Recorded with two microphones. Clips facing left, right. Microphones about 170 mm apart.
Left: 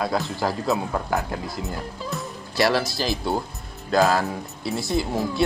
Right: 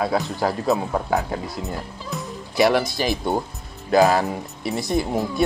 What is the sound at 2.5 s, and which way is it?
Speech, 20° right (ahead or behind).